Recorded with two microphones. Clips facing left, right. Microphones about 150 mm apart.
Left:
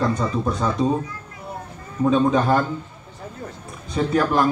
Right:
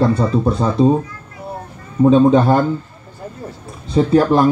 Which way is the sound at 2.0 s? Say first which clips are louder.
Right 7 dB; 30° right (ahead or behind).